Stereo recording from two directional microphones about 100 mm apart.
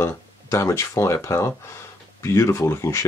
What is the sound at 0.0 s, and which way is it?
Speech, 30° left (ahead or behind).